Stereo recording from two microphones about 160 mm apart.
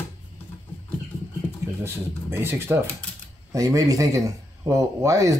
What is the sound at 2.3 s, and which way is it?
Speech, 15° right (ahead or behind).